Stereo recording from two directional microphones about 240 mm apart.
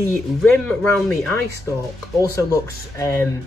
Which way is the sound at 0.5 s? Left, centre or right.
Centre.